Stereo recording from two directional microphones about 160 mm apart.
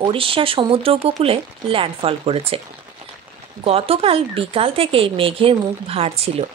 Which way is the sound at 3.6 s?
40° right (ahead or behind).